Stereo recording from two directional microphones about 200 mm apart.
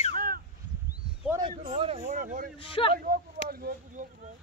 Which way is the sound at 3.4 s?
50° right (ahead or behind).